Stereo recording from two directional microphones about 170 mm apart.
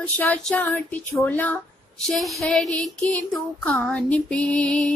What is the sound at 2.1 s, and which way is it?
Speech, centre (ahead or behind).